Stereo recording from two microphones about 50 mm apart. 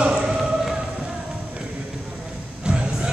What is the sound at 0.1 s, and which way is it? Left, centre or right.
Music, centre.